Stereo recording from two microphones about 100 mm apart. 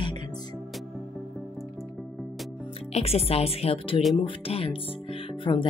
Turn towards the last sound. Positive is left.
turn(degrees=55)  # may be behind; listen again after turning